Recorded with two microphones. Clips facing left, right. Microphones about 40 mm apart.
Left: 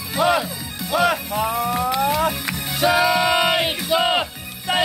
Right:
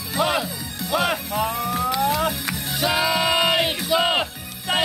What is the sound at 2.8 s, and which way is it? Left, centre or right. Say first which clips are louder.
Music: left 4 dB; centre.